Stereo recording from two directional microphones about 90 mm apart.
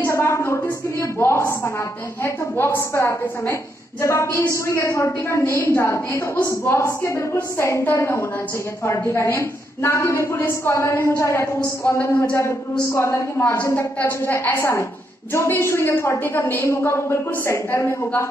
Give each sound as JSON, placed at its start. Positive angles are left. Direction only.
{"t": 0.0, "sound": "a woman's voice", "side_deg": 30}